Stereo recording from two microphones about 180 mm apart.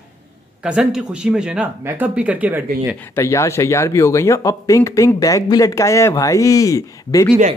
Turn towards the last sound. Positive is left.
turn(degrees=20)  # may be behind; listen again after turning